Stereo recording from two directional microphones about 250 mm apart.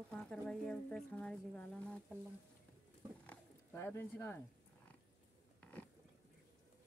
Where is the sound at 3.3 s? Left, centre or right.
Centre.